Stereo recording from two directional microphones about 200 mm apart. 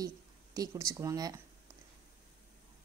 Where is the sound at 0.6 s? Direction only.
15° right (ahead or behind).